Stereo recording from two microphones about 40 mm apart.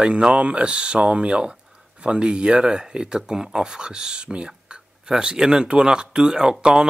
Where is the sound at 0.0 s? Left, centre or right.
Right.